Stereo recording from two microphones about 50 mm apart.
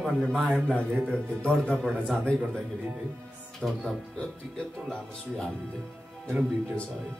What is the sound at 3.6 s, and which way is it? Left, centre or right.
Speech, centre.